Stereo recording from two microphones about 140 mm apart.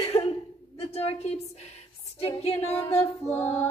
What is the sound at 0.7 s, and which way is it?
Speech, 50° left (ahead or behind).